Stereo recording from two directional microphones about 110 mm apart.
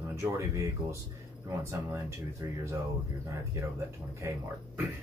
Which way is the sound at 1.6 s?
25° right (ahead or behind).